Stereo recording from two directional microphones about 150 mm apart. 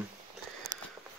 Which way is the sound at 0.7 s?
25° right (ahead or behind).